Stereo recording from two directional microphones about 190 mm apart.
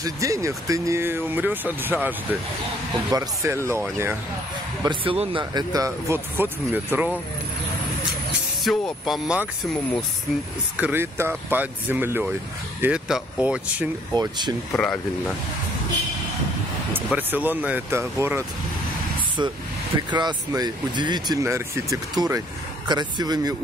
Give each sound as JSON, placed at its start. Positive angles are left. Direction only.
{"t": 0.0, "sound": "speech", "side_deg": -15}
{"t": 4.8, "sound": "speech", "side_deg": -30}
{"t": 8.6, "sound": "speech", "side_deg": 0}
{"t": 10.8, "sound": "speech", "side_deg": -10}
{"t": 14.1, "sound": "speech", "side_deg": -20}
{"t": 14.7, "sound": "speech", "side_deg": 5}
{"t": 16.9, "sound": "speech", "side_deg": -10}
{"t": 20.1, "sound": "speech", "side_deg": -20}